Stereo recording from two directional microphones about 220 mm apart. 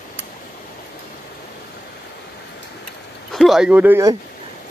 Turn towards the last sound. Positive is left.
turn(degrees=-10)  # may be behind; listen again after turning